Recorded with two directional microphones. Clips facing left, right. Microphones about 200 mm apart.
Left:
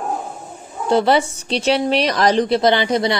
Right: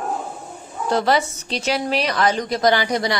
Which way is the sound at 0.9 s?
30° left (ahead or behind).